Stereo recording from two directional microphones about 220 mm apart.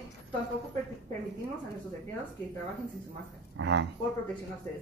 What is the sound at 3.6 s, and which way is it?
Speech, 50° right (ahead or behind).